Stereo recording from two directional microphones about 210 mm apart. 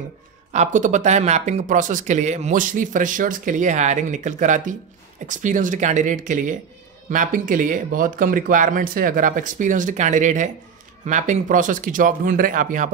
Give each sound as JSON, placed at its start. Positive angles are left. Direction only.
{"t": 0.5, "sound": "speech", "side_deg": -35}